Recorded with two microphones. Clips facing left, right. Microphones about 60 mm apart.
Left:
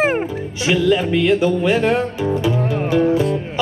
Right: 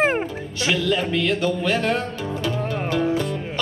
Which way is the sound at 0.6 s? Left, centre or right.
Centre.